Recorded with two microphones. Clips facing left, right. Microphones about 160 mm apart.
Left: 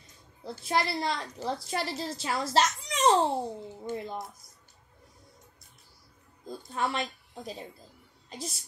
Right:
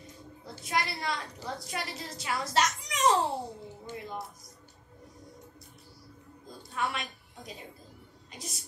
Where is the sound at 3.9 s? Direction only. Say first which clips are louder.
Left 7 dB; 50° left (ahead or behind).